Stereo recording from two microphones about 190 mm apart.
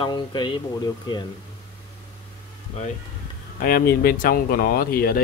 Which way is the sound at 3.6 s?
50° left (ahead or behind).